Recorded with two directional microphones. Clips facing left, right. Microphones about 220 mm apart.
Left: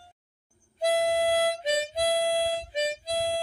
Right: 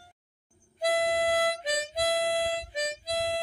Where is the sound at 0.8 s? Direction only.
25° left (ahead or behind).